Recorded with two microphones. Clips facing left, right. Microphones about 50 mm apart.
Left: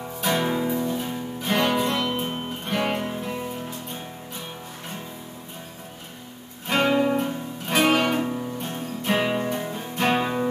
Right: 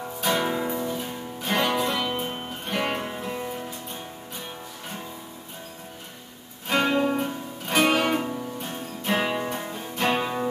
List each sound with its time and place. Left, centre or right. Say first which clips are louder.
0.2 s music: left 1 dB; centre
6.8 s music: left 3 dB; centre
7.2 s music: left 2 dB; centre
10.0 s music: left 2 dB; centre